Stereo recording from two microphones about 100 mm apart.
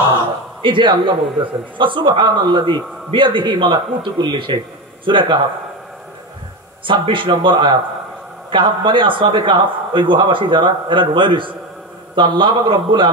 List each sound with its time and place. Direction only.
0.6 s a man's voice: 55° right (ahead or behind)
6.9 s a man's voice: 55° right (ahead or behind)